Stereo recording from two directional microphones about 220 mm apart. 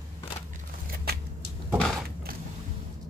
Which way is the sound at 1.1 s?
45° right (ahead or behind).